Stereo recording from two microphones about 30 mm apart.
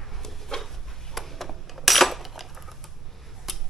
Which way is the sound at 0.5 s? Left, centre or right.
Centre.